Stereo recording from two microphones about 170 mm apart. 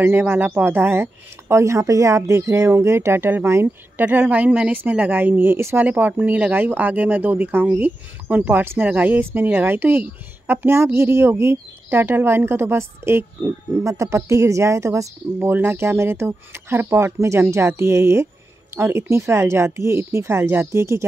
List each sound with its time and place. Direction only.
0.0 s speech: 10° right (ahead or behind)